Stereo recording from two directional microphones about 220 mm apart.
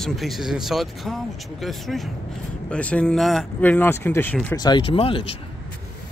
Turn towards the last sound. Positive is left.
turn(degrees=25)  # may be behind; listen again after turning